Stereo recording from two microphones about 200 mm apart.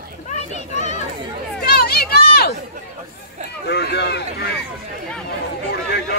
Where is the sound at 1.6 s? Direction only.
50° left (ahead or behind).